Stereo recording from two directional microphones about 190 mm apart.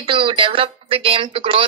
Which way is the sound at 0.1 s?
25° right (ahead or behind).